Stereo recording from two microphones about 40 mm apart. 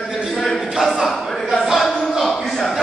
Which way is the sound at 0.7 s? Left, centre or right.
Centre.